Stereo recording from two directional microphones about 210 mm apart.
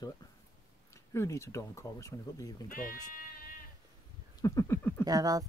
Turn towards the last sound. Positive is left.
turn(degrees=-20)  # may be behind; listen again after turning